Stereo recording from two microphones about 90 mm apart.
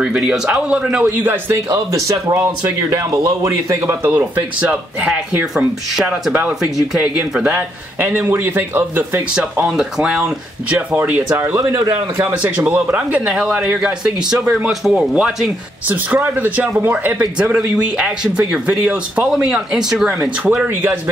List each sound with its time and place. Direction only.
0.0 s speech: 10° right (ahead or behind)
1.0 s a man's voice: 20° right (ahead or behind)
2.0 s speech: 40° right (ahead or behind)
4.1 s a man's voice: 20° right (ahead or behind)
7.5 s a man's voice: 25° right (ahead or behind)
9.3 s a man's voice: 10° right (ahead or behind); by 12.4 s 30° right (ahead or behind)
12.4 s speech: 15° right (ahead or behind)
20.6 s a man's voice: 20° right (ahead or behind)